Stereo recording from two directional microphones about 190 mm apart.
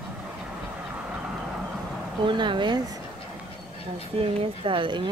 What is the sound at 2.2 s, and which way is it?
Speech, 25° right (ahead or behind).